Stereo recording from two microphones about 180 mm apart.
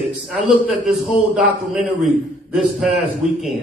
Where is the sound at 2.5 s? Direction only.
Centre (ahead or behind).